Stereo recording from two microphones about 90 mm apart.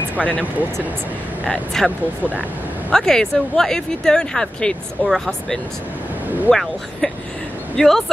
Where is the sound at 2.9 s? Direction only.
5° left (ahead or behind).